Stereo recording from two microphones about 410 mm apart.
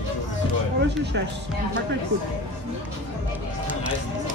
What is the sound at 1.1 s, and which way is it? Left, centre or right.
Speech, right.